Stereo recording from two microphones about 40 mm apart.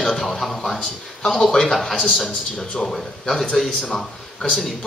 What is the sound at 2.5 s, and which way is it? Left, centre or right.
Speech, centre.